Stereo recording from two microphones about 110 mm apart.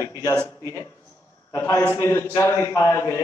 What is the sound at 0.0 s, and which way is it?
A man's voice, 30° left (ahead or behind).